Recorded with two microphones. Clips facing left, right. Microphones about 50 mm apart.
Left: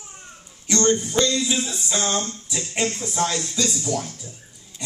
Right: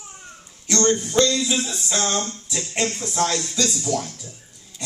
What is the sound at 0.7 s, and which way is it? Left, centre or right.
Speech, centre.